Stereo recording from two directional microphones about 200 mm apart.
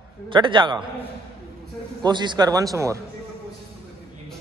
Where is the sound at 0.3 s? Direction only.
25° right (ahead or behind).